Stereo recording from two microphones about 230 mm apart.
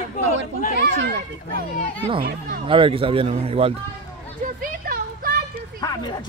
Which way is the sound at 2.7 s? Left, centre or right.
Right.